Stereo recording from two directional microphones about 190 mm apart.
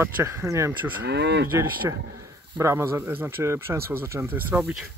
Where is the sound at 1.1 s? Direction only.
65° right (ahead or behind).